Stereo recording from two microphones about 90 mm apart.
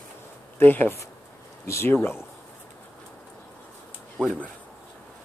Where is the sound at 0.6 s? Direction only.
20° left (ahead or behind).